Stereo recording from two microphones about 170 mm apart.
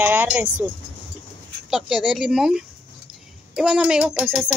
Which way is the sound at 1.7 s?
Centre (ahead or behind).